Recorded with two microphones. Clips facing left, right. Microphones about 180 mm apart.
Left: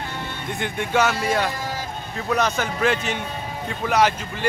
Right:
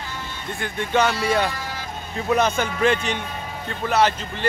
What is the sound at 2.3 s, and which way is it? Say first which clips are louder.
A man's voice: right 2 dB; centre (ahead or behind).